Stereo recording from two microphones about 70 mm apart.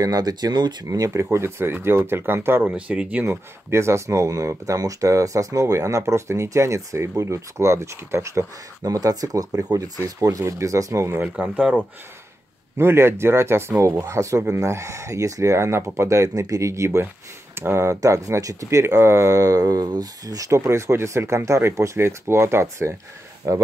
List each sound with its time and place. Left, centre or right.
0.0 s speech: right
0.8 s speech: right
2.7 s speech: centre
3.3 s speech: right
8.8 s speech: right
11.1 s speech: right
12.7 s speech: right